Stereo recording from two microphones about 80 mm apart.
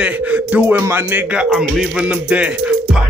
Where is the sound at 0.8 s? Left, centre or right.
Right.